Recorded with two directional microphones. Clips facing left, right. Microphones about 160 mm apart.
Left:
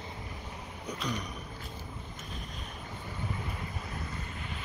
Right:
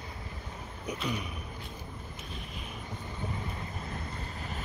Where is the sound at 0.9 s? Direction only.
5° right (ahead or behind).